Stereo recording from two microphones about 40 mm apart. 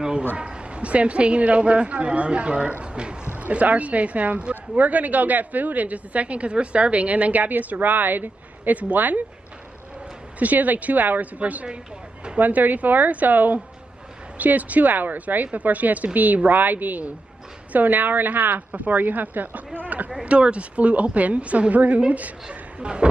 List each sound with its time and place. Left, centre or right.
0.4 s a woman's voice: right
3.3 s a woman's voice: right
10.4 s a woman's voice: right
20.2 s a woman's voice: right